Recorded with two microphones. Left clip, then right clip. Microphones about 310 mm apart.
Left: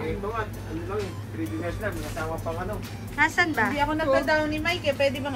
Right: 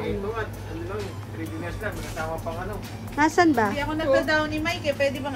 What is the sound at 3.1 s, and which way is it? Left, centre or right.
Speech, centre.